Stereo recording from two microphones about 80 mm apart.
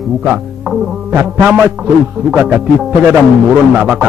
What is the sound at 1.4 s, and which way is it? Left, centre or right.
Speech, centre.